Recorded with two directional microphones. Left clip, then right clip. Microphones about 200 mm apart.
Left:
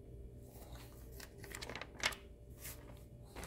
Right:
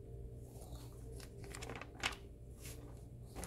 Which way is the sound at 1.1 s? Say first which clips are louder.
Left 3 dB; 35° left (ahead or behind).